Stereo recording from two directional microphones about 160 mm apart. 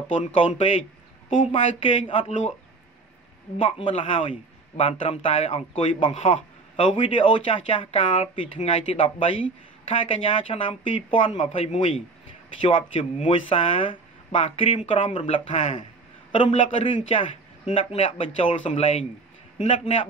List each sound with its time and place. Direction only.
0.4 s speech: 35° left (ahead or behind)
3.5 s speech: 35° left (ahead or behind)
6.1 s a man's voice: 45° left (ahead or behind)
6.8 s speech: 30° left (ahead or behind)